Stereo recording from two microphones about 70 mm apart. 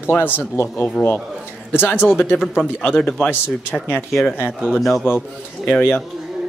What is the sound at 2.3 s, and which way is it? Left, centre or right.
Speech, centre.